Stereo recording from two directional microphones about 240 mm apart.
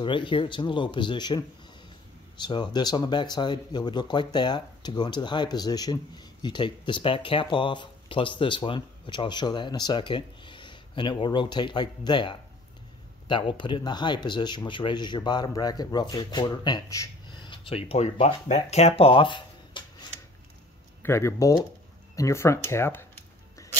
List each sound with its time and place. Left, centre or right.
0.0 s speech: centre